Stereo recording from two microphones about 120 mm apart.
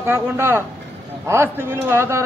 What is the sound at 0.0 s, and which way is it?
A man's voice, 20° right (ahead or behind).